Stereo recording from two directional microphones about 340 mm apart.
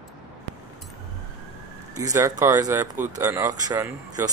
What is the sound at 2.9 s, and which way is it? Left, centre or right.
Speech, right.